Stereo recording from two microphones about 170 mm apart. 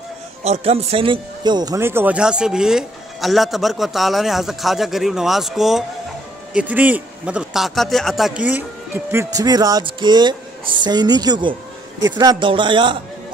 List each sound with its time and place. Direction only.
0.4 s a man's voice: 40° right (ahead or behind)